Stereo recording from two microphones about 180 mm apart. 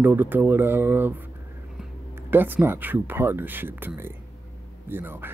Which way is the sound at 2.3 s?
10° right (ahead or behind).